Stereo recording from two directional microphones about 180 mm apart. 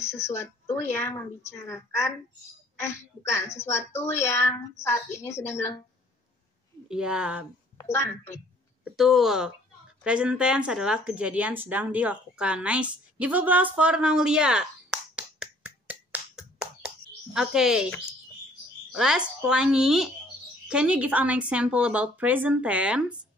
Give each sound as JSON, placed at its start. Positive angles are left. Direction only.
{"t": 0.1, "sound": "a woman's voice", "side_deg": 15}
{"t": 6.9, "sound": "a woman's voice", "side_deg": -5}
{"t": 7.7, "sound": "a woman's voice", "side_deg": 15}
{"t": 8.8, "sound": "a woman's voice", "side_deg": 0}
{"t": 18.9, "sound": "a woman's voice", "side_deg": -5}